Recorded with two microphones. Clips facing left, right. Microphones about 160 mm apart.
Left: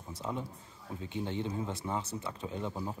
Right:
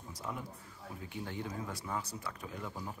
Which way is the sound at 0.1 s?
25° left (ahead or behind).